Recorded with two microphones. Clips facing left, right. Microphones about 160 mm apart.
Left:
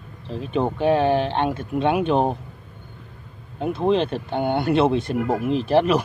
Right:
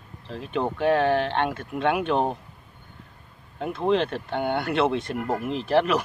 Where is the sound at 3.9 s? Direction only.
30° left (ahead or behind).